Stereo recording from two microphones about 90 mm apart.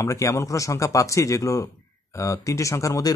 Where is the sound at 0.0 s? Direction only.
35° left (ahead or behind).